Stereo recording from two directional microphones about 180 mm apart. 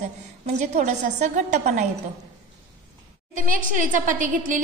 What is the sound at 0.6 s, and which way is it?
A woman's voice, 40° right (ahead or behind).